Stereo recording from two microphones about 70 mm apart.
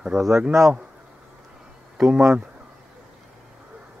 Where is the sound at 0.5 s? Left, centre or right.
Right.